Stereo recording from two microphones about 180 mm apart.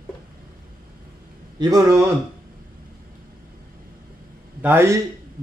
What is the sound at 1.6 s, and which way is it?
Speech, 20° right (ahead or behind).